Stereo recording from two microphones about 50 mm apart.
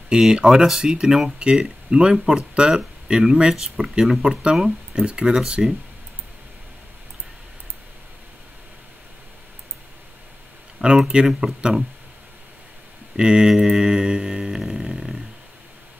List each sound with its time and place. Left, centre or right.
0.1 s speech: centre
10.8 s speech: centre
13.1 s a sound: centre